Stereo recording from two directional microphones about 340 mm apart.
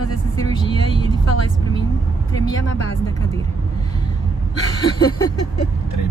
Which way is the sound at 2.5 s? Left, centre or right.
Left.